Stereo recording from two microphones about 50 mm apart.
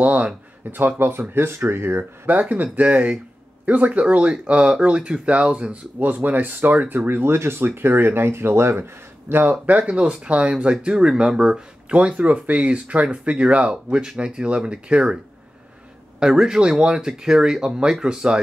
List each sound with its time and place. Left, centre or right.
0.0 s speech: right
0.7 s speech: right
1.7 s speech: right
2.5 s speech: right
5.9 s speech: right
9.3 s speech: right
9.7 s speech: right
11.9 s speech: right
16.2 s speech: centre